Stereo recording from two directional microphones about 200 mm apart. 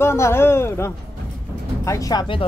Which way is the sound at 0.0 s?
15° left (ahead or behind).